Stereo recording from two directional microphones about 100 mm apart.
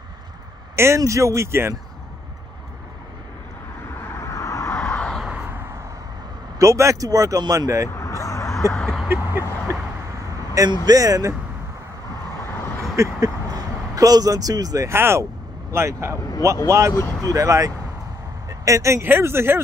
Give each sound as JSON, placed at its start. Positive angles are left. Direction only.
{"t": 0.7, "sound": "speech", "side_deg": -30}
{"t": 4.0, "sound": "vehicle", "side_deg": 25}
{"t": 4.6, "sound": "vehicle", "side_deg": 10}
{"t": 6.6, "sound": "speech", "side_deg": -30}
{"t": 7.9, "sound": "vehicle", "side_deg": 30}
{"t": 8.7, "sound": "a sound", "side_deg": 5}
{"t": 9.7, "sound": "vehicle", "side_deg": -30}
{"t": 10.9, "sound": "speech", "side_deg": -35}
{"t": 12.9, "sound": "a sound", "side_deg": -30}
{"t": 13.9, "sound": "speech", "side_deg": -35}
{"t": 14.9, "sound": "speech", "side_deg": -25}
{"t": 16.9, "sound": "speech", "side_deg": 25}
{"t": 17.3, "sound": "speech", "side_deg": -35}